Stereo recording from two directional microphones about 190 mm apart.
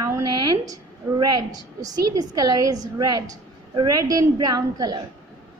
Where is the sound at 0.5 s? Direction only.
20° right (ahead or behind).